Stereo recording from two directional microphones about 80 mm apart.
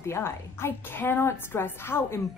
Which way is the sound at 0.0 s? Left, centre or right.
Left.